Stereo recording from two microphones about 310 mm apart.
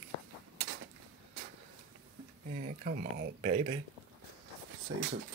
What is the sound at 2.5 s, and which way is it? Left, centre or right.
Speech, right.